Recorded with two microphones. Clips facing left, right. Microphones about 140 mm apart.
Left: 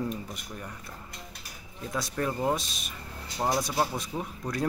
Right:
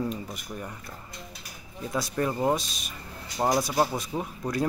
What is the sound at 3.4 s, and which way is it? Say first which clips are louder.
Speech: right 3 dB; 20° right (ahead or behind).